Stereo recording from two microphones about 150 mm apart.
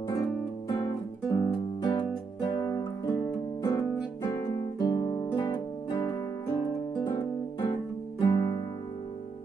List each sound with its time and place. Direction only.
0.1 s music: 20° left (ahead or behind)
3.6 s guitar: 25° left (ahead or behind)
4.7 s music: 30° left (ahead or behind)
7.1 s guitar: 30° left (ahead or behind)
8.2 s music: 25° left (ahead or behind)